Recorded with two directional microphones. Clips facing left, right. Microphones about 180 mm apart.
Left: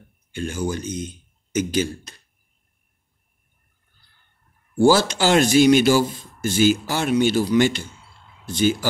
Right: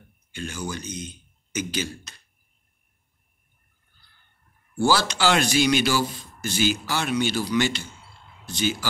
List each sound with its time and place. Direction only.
0.3 s speech: 50° left (ahead or behind)
4.7 s speech: 50° left (ahead or behind)